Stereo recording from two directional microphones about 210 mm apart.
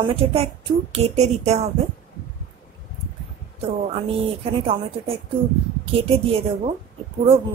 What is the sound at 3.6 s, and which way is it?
A woman's voice, 25° right (ahead or behind).